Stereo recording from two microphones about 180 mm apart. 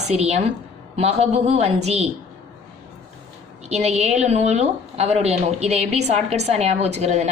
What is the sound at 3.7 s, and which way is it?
A woman's voice, 35° right (ahead or behind).